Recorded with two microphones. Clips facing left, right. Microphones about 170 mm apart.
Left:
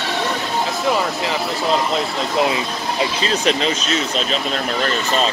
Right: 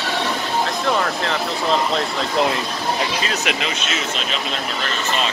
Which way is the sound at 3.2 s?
30° left (ahead or behind).